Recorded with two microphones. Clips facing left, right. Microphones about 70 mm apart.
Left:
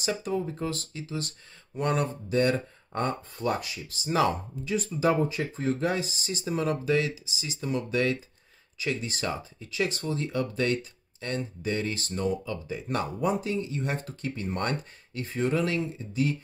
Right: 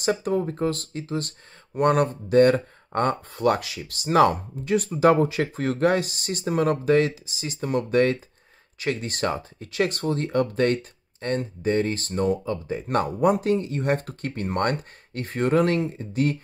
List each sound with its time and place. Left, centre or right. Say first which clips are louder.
0.0 s speech: right 6 dB; right